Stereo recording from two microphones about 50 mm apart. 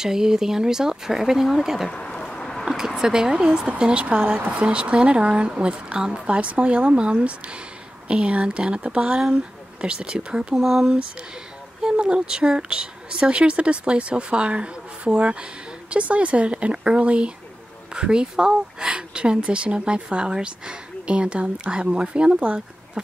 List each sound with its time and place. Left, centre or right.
0.0 s speech: centre
1.9 s a sound: centre
2.6 s speech: centre
10.5 s speech: centre
11.8 s speech: centre